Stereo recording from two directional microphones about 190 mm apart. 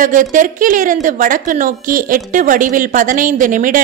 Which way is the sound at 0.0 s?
45° right (ahead or behind).